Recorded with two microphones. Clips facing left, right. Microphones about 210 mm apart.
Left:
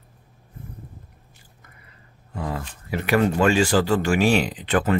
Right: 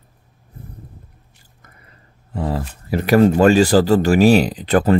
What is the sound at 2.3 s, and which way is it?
Speech, 35° right (ahead or behind).